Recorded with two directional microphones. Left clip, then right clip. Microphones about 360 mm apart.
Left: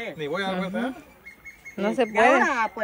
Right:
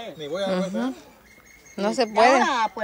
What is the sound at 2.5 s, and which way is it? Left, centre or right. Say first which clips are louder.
Speech: right 2 dB; centre.